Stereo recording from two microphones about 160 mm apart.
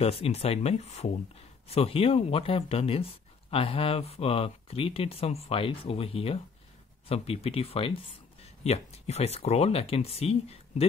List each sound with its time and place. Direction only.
0.0 s speech: 40° left (ahead or behind)